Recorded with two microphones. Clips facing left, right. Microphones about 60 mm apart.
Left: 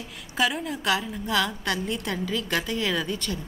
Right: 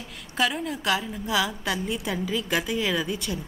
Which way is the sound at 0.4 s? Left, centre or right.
Centre.